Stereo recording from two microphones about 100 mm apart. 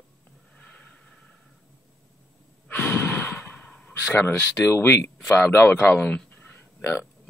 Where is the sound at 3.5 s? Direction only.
10° left (ahead or behind).